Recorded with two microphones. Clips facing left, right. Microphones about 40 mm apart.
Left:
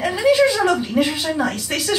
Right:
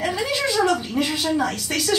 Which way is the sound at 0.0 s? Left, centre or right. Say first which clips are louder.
Left 8 dB; centre.